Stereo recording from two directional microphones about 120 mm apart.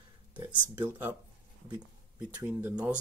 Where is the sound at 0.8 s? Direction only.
15° right (ahead or behind).